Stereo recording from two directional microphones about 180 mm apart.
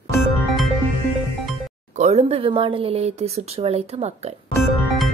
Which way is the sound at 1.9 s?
35° right (ahead or behind).